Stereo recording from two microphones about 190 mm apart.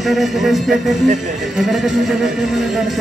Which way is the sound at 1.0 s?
40° right (ahead or behind).